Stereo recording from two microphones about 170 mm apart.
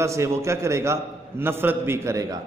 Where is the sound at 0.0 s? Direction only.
15° right (ahead or behind).